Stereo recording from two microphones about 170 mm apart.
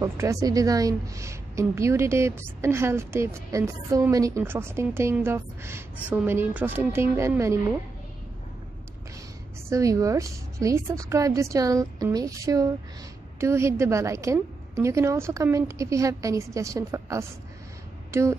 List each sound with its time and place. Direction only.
0.0 s a woman's voice: 20° right (ahead or behind)
9.7 s a woman's voice: 20° right (ahead or behind)